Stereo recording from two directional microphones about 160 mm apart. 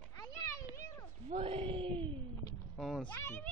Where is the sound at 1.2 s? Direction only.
40° right (ahead or behind).